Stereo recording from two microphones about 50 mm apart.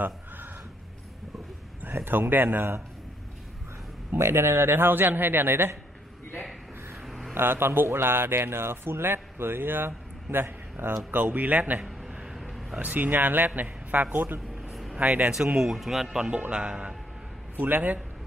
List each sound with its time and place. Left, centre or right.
2.0 s a man's voice: right
4.2 s a man's voice: right
7.0 s a sound: centre
7.3 s a man's voice: right
12.1 s a sound: right
12.4 s a sound: centre
12.7 s speech: right
13.0 s a man's voice: right
14.6 s a sound: centre
15.0 s speech: right
15.3 s speech: right
15.6 s a man's voice: centre
16.3 s speech: right
17.6 s speech: right